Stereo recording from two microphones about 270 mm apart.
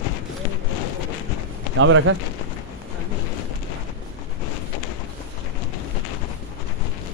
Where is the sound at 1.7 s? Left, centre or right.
Right.